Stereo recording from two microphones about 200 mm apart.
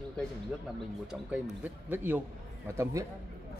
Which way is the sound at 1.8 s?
10° right (ahead or behind).